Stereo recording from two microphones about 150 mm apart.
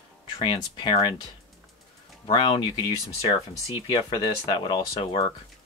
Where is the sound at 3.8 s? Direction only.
35° left (ahead or behind).